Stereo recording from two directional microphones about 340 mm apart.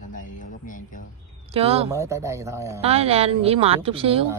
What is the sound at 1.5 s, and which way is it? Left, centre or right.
Speech, centre.